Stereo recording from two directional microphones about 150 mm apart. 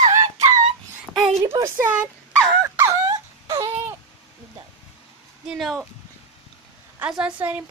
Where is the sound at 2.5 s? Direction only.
15° right (ahead or behind).